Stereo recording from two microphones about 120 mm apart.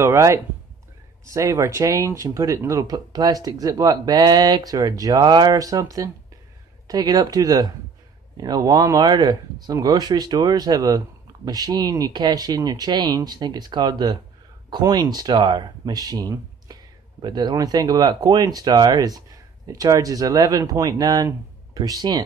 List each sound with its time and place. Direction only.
0.0 s speech: 25° right (ahead or behind)